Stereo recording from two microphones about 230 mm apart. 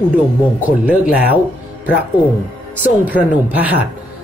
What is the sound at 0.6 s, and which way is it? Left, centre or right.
Speech, centre.